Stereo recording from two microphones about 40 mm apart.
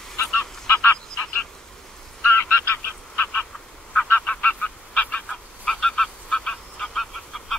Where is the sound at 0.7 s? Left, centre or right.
Left.